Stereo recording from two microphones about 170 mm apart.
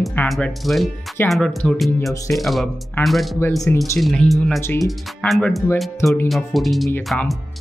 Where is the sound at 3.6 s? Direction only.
20° left (ahead or behind).